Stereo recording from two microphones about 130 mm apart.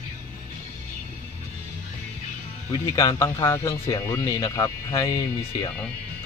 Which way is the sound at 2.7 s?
25° left (ahead or behind).